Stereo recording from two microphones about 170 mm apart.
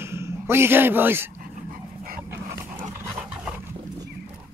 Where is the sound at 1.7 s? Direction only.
55° right (ahead or behind).